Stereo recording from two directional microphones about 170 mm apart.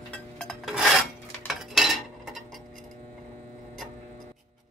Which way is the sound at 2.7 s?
50° right (ahead or behind).